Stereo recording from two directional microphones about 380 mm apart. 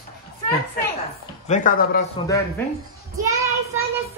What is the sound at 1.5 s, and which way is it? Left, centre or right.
Speech, left.